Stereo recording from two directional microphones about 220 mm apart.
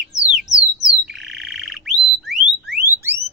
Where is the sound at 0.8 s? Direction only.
Centre (ahead or behind).